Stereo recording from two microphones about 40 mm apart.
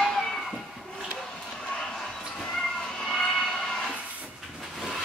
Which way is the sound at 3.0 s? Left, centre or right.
Centre.